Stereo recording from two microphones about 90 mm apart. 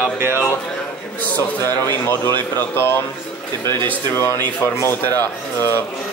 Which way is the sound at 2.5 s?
25° left (ahead or behind).